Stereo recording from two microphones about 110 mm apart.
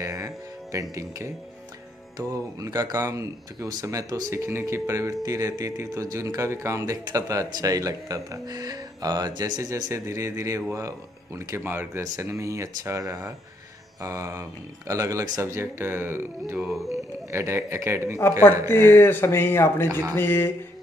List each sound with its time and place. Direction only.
0.0 s music: 30° right (ahead or behind)
0.9 s speech: 25° right (ahead or behind)
18.7 s speech: 20° left (ahead or behind)